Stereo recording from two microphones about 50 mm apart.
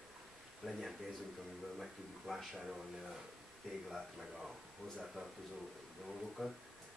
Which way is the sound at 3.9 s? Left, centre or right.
Centre.